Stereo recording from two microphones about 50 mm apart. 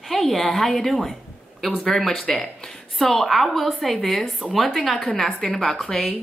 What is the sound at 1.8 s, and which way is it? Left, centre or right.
Speech, centre.